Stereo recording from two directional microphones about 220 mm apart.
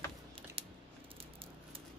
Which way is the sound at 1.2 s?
25° right (ahead or behind).